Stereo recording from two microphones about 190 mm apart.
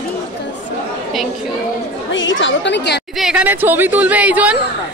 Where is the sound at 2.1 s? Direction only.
80° left; by 3.1 s 65° left (ahead or behind).